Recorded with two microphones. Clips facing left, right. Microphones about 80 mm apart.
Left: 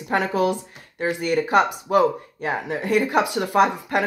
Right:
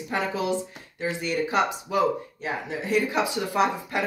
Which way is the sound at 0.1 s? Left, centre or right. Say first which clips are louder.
Left 5 dB; left.